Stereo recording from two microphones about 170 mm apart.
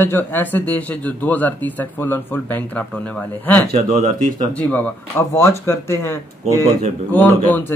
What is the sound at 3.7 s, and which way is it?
Speech, 45° right (ahead or behind).